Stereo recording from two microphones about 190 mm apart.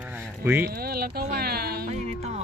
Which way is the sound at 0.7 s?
55° right (ahead or behind).